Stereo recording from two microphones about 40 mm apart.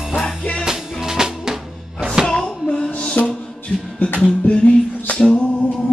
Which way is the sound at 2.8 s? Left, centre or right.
Left.